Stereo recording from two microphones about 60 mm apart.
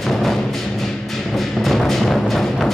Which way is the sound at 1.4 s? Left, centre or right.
Centre.